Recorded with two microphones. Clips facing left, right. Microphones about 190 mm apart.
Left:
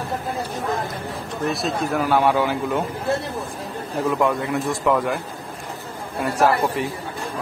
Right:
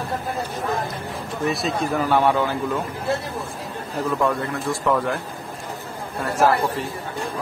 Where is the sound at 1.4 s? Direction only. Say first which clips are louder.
Even; centre (ahead or behind).